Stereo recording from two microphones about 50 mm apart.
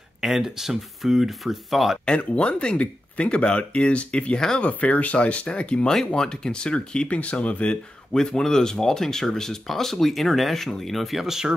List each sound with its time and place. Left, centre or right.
0.2 s speech: centre
2.0 s speech: left
8.1 s speech: centre